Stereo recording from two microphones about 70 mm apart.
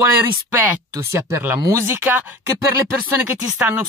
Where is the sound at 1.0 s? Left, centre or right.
Right.